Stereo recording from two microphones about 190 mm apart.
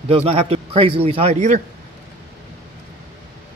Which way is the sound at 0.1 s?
30° right (ahead or behind).